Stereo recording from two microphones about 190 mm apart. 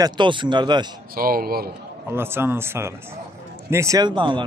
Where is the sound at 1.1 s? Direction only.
50° right (ahead or behind).